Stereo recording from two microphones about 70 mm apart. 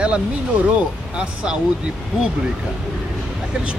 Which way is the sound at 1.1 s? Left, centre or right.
Centre.